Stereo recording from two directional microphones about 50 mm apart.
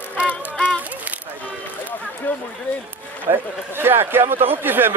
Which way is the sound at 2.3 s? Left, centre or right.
Left.